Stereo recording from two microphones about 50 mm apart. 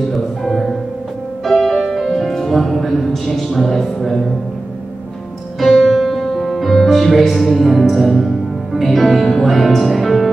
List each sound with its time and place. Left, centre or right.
0.1 s music: centre
5.6 s music: centre
8.7 s speech: centre